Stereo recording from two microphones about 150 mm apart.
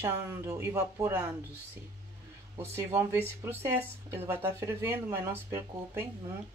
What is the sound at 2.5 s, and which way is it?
A woman's voice, 15° right (ahead or behind).